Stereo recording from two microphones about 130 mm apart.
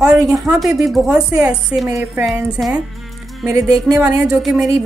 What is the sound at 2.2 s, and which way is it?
Speech, 5° right (ahead or behind).